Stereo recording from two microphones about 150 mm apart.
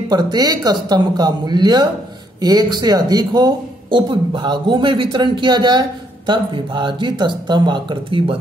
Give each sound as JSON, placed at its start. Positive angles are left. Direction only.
{"t": 0.1, "sound": "speech", "side_deg": -25}